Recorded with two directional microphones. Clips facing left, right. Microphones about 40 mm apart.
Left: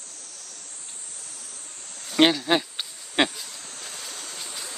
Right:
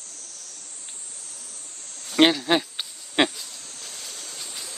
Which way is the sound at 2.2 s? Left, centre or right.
Centre.